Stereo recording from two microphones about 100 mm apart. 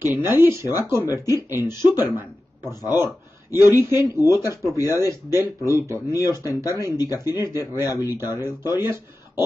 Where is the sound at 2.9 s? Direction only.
25° right (ahead or behind).